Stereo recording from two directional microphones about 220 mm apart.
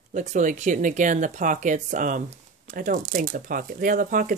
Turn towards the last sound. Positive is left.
turn(degrees=-40)  # may be behind; listen again after turning